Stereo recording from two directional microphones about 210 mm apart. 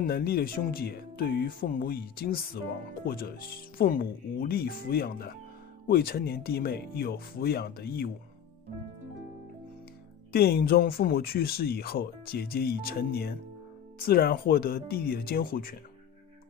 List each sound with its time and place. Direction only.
0.0 s speech: 45° left (ahead or behind)
10.3 s speech: 45° left (ahead or behind)